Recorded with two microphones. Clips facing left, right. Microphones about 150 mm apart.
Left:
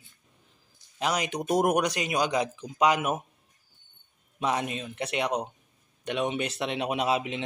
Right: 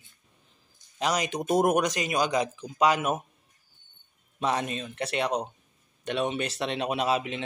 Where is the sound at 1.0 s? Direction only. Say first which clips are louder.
Right 1 dB; 10° left (ahead or behind).